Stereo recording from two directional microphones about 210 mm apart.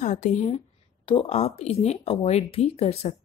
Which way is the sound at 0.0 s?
35° left (ahead or behind).